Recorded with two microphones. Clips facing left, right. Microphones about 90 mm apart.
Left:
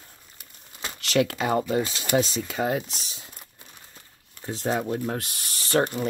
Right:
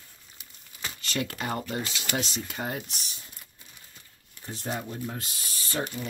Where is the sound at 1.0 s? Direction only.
90° left.